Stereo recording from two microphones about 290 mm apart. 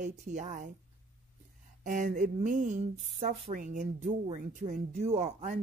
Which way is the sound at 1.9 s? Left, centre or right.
Right.